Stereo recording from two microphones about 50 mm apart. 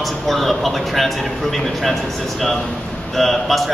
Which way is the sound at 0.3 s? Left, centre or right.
Centre.